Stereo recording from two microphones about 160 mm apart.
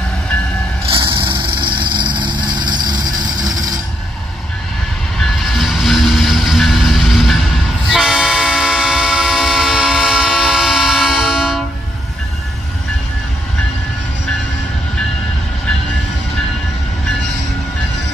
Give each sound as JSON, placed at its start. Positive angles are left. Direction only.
{"t": 0.8, "sound": "vehicle", "side_deg": -30}
{"t": 5.2, "sound": "vehicle", "side_deg": 0}